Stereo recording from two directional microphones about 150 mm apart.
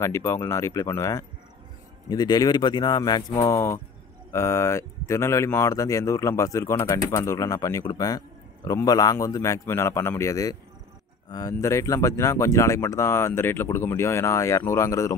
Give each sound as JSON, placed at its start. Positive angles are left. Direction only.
{"t": 0.0, "sound": "speech", "side_deg": 20}